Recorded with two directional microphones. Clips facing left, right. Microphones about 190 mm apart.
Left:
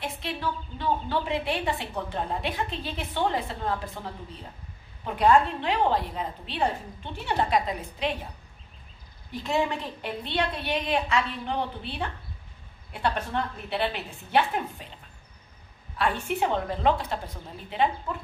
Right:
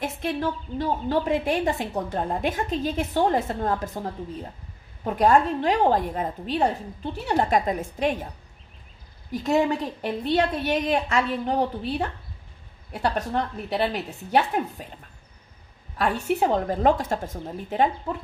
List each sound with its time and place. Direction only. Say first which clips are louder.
0.0 s a woman's voice: right 5 dB; 45° right (ahead or behind)
9.3 s a woman's voice: right 5 dB; 40° right (ahead or behind)
16.0 s a woman's voice: right 3 dB; 40° right (ahead or behind)